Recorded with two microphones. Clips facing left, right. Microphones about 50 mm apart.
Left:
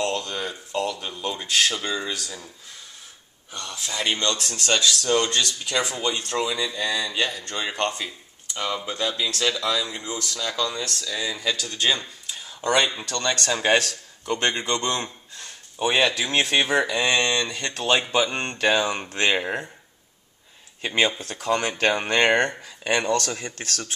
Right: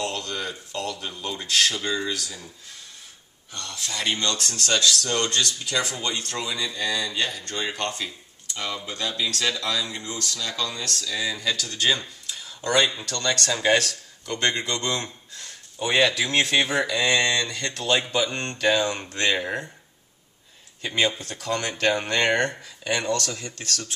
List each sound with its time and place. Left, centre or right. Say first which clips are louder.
0.0 s speech: left 3 dB; centre
3.5 s speech: left 2 dB; centre; by 14.8 s left
14.8 s speech: left 1 dB; centre
20.9 s speech: left 1 dB; centre
22.1 s speech: left 2 dB; left